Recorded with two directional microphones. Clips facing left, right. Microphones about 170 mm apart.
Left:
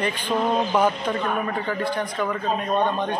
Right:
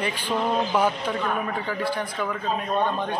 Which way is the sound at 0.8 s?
5° right (ahead or behind).